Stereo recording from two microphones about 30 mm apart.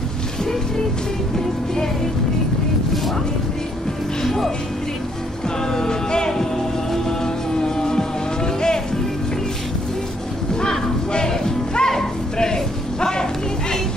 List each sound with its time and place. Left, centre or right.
4.2 s speech: centre
5.7 s music: left
7.6 s music: left
11.2 s music: centre
12.4 s a sound: centre